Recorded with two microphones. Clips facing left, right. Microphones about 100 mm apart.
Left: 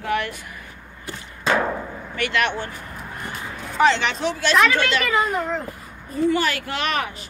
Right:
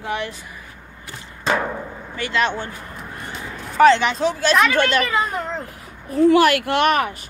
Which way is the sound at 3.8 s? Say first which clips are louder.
Right 5 dB; 35° right (ahead or behind).